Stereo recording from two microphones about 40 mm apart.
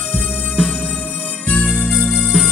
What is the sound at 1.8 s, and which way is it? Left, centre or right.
Music, centre.